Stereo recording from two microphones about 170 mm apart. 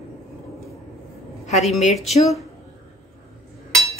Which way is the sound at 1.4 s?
40° left (ahead or behind).